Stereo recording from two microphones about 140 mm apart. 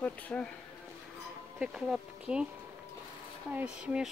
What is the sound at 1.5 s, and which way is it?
Speech, 5° right (ahead or behind).